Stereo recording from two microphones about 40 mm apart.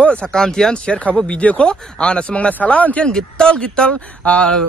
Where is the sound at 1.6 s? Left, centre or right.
Left.